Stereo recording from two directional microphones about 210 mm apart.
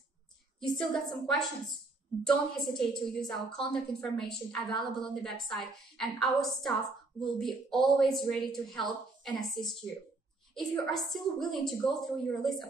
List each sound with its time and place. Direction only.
0.6 s speech: centre (ahead or behind)